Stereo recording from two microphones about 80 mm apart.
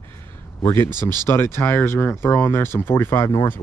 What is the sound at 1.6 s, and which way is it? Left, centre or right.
Speech, left.